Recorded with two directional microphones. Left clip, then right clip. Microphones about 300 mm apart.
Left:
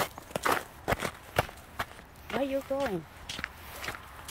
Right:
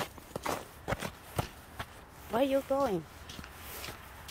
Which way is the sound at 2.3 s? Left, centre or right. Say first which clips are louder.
Right 2 dB; centre.